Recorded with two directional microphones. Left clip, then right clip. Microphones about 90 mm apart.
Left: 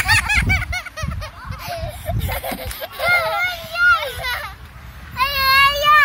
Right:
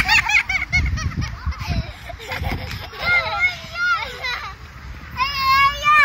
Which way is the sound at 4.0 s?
20° left (ahead or behind).